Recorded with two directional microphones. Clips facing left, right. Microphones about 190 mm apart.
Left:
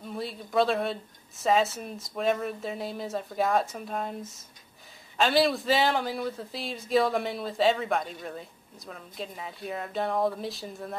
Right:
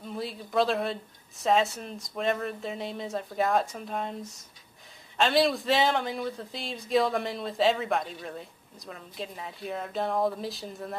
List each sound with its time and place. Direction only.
0.0 s speech: centre (ahead or behind)